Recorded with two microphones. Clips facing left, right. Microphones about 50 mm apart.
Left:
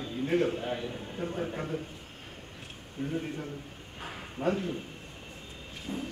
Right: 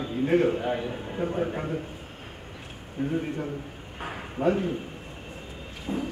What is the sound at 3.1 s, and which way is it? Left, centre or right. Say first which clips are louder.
A man's voice: right 5 dB; right.